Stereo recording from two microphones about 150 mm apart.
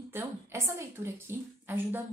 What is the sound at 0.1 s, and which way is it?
A woman's voice, 15° right (ahead or behind).